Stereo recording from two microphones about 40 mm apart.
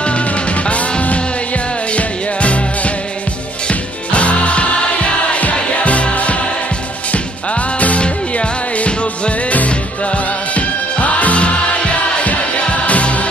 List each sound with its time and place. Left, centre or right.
0.0 s music: left